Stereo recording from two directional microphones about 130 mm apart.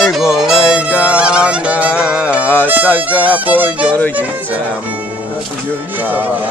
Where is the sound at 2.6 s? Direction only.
15° right (ahead or behind).